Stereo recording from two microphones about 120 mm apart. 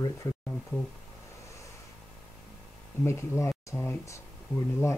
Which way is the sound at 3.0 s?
20° left (ahead or behind).